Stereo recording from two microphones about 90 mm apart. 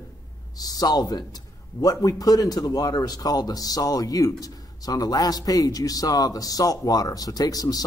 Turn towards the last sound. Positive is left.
turn(degrees=45)  # may be behind; listen again after turning